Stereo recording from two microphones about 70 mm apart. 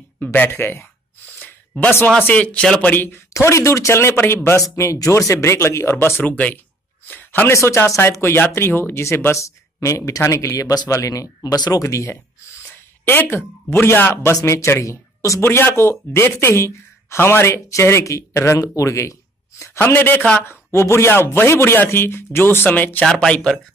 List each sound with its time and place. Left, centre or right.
0.2 s speech: left
2.3 s speech: centre
2.9 s a man's voice: left
3.3 s speech: left
6.2 s a man's voice: left
7.5 s speech: left
11.8 s speech: left
13.0 s speech: left
15.4 s speech: left
19.8 s a man's voice: left
23.0 s speech: centre